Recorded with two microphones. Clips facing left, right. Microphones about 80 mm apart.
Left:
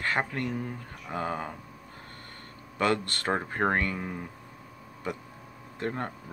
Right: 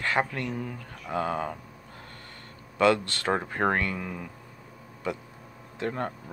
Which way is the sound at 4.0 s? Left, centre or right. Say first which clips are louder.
Even; left.